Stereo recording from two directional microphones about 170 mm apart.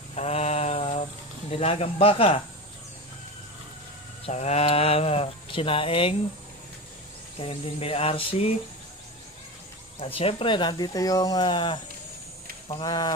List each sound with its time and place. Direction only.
0.1 s a sound: 40° left (ahead or behind)
1.5 s speech: 35° left (ahead or behind)
4.3 s speech: 40° left (ahead or behind)
7.3 s speech: 35° left (ahead or behind)
9.9 s speech: 35° left (ahead or behind)